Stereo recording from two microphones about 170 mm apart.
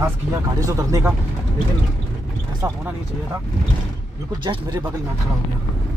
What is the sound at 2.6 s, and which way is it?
Speech, 25° right (ahead or behind).